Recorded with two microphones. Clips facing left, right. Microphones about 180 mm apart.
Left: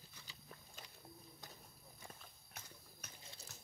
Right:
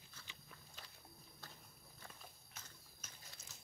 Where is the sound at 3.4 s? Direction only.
65° left (ahead or behind).